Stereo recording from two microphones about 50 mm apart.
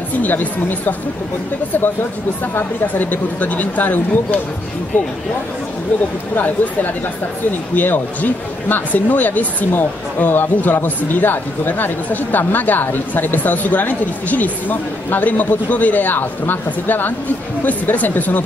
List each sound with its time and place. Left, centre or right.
0.1 s speech: left
2.9 s speech: left
6.3 s speech: left